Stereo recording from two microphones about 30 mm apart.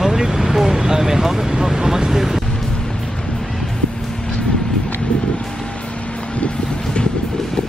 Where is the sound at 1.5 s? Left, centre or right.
Right.